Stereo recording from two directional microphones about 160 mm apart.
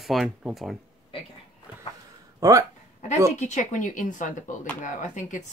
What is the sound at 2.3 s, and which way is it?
Speech, 20° right (ahead or behind).